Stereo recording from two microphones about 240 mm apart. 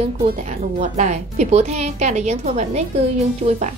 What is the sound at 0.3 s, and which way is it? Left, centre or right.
Speech, right.